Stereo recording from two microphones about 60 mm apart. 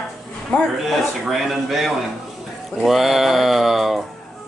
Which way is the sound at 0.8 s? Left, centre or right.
Centre.